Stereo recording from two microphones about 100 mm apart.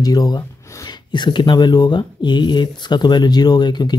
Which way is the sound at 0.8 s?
50° left (ahead or behind).